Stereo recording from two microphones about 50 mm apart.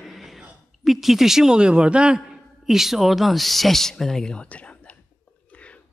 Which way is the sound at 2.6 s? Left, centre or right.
Centre.